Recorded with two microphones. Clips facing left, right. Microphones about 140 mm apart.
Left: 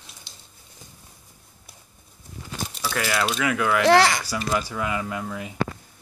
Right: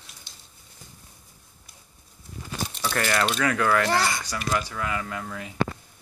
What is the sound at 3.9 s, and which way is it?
Speech, 90° left.